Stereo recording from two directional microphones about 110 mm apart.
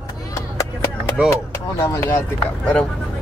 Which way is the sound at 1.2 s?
10° right (ahead or behind).